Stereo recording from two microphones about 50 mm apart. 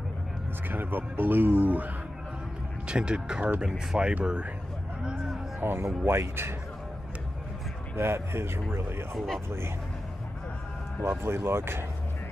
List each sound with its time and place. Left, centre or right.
0.7 s speech: right
2.9 s speech: centre
5.6 s speech: right
7.9 s speech: right
9.1 s speech: centre
11.1 s speech: right